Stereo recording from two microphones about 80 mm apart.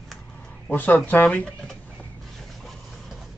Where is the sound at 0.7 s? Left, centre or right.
Left.